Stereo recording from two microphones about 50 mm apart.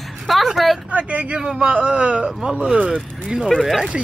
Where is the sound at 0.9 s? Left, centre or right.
Right.